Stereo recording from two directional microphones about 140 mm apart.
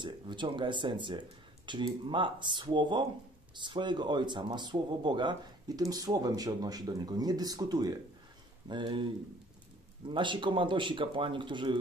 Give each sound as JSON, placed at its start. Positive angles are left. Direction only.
{"t": 0.0, "sound": "speech", "side_deg": -35}